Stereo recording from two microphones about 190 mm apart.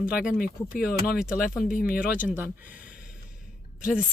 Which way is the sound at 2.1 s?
10° right (ahead or behind).